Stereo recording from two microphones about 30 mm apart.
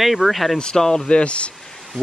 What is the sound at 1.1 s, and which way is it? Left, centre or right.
Speech, left.